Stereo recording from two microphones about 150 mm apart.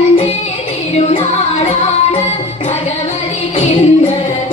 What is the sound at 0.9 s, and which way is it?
Music, 45° left (ahead or behind).